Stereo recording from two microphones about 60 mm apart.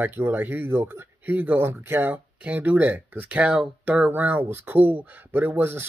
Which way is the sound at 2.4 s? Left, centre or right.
Right.